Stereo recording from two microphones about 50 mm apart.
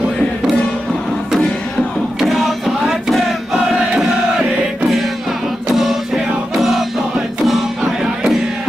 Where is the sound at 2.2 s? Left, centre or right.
Centre.